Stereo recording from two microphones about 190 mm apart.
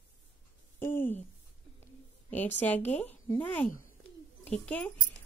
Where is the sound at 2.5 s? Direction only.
10° left (ahead or behind).